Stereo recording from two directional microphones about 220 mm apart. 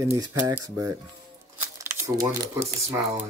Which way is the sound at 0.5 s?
15° right (ahead or behind).